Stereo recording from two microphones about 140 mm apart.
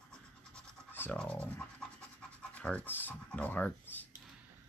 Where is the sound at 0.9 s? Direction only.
10° left (ahead or behind).